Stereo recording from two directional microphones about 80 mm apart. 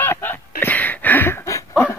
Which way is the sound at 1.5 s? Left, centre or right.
Left.